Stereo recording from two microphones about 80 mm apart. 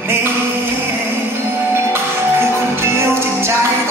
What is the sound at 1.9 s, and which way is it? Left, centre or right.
Music, right.